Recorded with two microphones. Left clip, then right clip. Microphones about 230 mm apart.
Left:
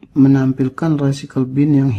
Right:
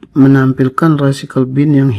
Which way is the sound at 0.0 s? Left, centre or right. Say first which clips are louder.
Right 4 dB; centre.